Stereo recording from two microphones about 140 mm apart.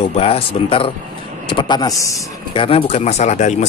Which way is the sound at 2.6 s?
40° left (ahead or behind).